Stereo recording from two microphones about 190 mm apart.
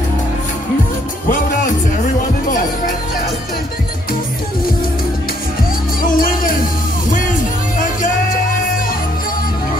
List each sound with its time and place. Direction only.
6.0 s music: 45° left (ahead or behind)